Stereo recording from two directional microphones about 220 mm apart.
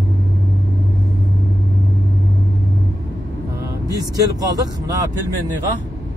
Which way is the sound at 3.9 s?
15° right (ahead or behind).